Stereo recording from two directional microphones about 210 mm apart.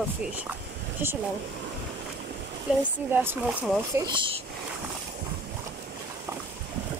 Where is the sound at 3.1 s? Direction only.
10° right (ahead or behind).